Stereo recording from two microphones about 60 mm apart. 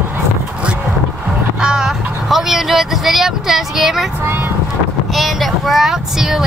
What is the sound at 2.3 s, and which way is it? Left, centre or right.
Speech, centre.